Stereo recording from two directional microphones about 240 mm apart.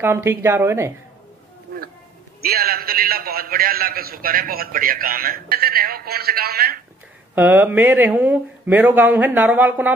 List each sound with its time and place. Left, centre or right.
0.0 s speech: centre
2.4 s a man's voice: right
7.3 s speech: centre